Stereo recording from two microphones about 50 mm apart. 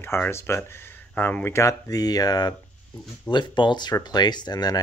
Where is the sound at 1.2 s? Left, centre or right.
Left.